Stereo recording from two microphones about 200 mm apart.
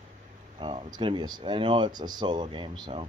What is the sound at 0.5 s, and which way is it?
Speech, 25° right (ahead or behind).